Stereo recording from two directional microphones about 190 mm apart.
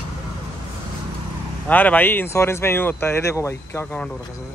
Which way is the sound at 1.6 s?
10° left (ahead or behind).